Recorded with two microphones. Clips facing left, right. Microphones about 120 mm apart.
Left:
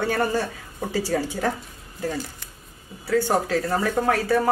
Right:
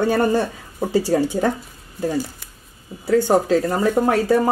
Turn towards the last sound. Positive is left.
turn(degrees=-15)  # may be behind; listen again after turning